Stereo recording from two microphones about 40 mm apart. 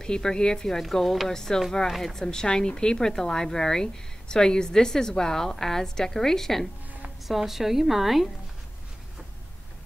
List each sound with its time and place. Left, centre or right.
0.0 s speech: centre
0.9 s a woman's voice: centre
1.3 s speech: centre
1.9 s a woman's voice: centre
2.1 s speech: centre
7.2 s a woman's voice: centre